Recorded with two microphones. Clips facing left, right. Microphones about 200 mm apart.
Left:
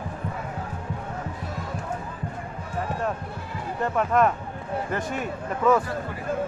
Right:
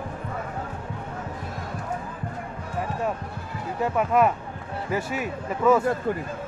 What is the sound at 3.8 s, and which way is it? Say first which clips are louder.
Speech: right 1 dB; 5° right (ahead or behind).